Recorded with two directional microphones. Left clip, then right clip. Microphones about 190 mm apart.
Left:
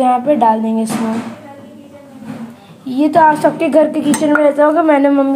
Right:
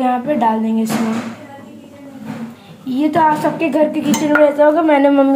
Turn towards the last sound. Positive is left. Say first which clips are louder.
# left 1 dB
turn(degrees=15)  # may be behind; listen again after turning